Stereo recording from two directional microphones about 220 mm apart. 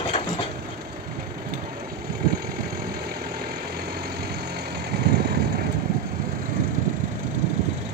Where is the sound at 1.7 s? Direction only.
45° right (ahead or behind).